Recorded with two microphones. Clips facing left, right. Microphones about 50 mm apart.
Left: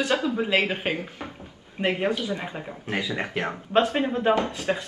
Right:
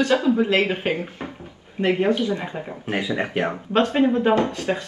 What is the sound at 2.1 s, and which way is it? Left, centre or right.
Speech, right.